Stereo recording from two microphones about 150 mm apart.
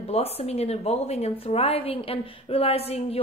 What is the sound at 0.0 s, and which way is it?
A woman's voice, 45° left (ahead or behind).